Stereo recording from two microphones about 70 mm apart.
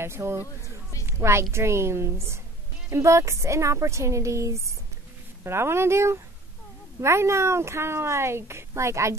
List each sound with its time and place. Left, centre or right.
0.0 s a woman's voice: right